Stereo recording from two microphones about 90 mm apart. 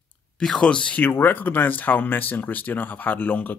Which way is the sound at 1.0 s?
20° left (ahead or behind).